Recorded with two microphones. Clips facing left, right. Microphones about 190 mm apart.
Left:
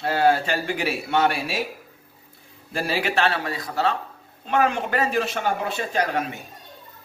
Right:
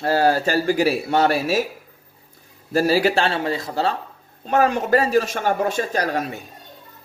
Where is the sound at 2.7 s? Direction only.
40° right (ahead or behind).